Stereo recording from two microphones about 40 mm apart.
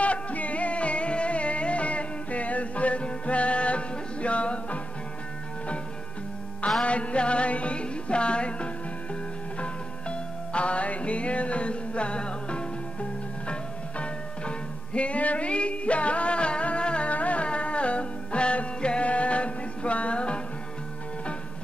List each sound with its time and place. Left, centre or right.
0.0 s music: left
6.8 s music: left